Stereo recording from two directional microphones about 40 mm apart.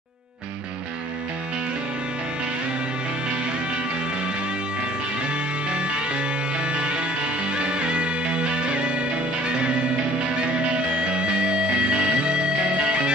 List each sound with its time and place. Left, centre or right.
5.7 s music: right